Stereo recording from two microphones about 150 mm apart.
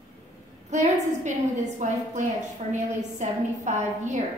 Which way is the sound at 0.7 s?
50° right (ahead or behind).